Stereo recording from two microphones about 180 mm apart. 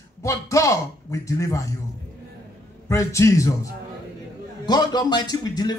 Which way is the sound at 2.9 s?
15° left (ahead or behind).